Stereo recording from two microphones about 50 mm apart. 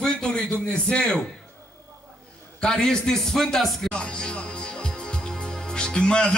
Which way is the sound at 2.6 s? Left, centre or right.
Centre.